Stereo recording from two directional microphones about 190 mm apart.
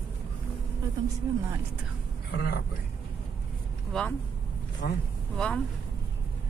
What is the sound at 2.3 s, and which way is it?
Speech, 55° left (ahead or behind).